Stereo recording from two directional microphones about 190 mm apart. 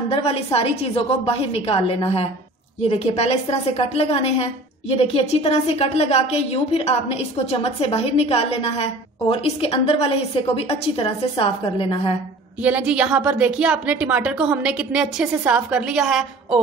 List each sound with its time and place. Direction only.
0.1 s a woman's voice: 30° left (ahead or behind)
12.6 s a woman's voice: 5° right (ahead or behind)